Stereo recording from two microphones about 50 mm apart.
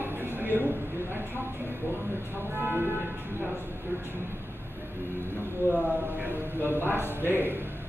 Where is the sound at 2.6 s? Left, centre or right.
Right.